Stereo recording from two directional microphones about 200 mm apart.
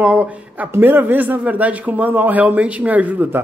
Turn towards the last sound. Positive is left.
turn(degrees=-10)  # may be behind; listen again after turning